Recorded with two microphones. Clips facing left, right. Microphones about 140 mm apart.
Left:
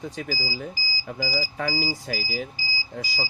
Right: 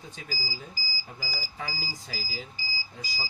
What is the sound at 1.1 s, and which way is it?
Speech, 70° left (ahead or behind).